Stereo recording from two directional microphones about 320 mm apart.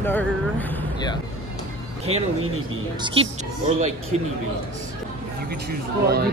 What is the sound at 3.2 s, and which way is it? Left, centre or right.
Speech, centre.